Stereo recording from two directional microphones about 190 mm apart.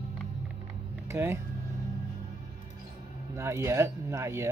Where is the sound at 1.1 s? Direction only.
15° right (ahead or behind).